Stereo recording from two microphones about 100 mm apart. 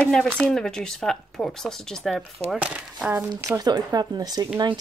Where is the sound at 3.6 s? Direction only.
40° right (ahead or behind).